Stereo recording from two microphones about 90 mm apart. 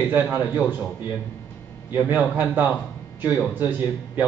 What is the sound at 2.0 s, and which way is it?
A man's voice, 20° right (ahead or behind).